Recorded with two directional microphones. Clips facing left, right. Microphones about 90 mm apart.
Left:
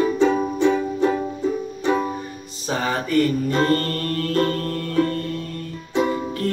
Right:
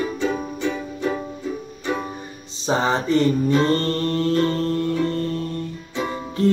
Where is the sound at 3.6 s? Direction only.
25° right (ahead or behind).